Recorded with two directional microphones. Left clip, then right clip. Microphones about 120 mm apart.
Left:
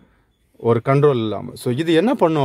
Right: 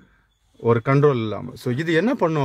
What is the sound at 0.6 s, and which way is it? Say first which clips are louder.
Speech: left 2 dB; 10° left (ahead or behind).